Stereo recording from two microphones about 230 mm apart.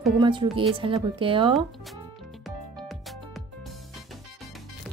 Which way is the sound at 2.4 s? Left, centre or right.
Centre.